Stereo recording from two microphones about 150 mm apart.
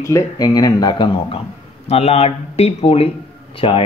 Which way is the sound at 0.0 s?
20° left (ahead or behind).